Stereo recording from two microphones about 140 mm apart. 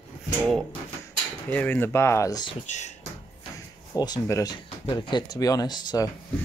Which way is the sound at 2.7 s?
55° left (ahead or behind).